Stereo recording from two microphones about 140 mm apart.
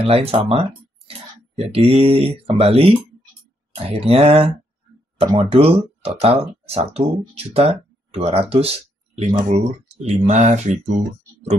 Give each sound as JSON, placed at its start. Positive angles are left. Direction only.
{"t": 0.0, "sound": "speech", "side_deg": -45}